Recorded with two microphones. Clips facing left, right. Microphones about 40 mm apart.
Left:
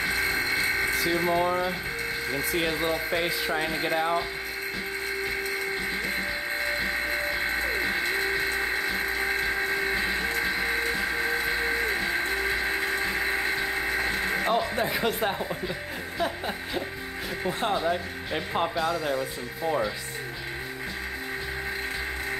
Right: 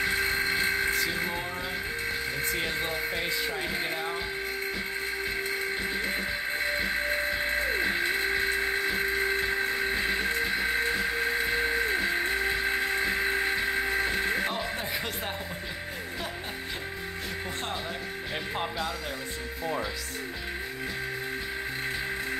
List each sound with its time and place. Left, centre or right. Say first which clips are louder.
0.9 s music: left 3 dB; centre
1.2 s speech: left 8 dB; left
14.4 s speech: left 6 dB; centre
17.5 s speech: left 11 dB; centre